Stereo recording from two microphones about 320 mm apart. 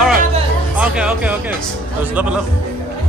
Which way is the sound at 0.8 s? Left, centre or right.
Centre.